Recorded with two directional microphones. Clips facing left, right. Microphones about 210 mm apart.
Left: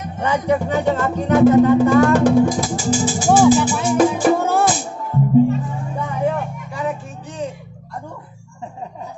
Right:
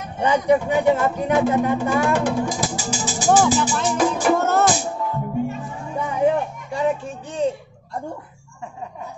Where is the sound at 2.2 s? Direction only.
40° left (ahead or behind).